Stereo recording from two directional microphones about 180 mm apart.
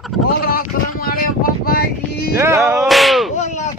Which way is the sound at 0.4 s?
55° left (ahead or behind).